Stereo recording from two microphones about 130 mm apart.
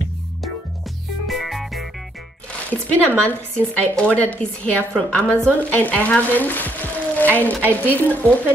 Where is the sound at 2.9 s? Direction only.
10° left (ahead or behind).